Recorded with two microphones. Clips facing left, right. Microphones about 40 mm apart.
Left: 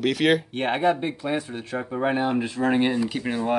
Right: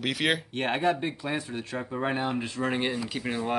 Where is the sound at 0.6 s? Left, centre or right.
Centre.